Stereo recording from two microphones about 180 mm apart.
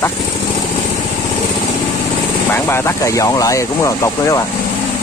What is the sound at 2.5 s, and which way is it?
Speech, 15° left (ahead or behind).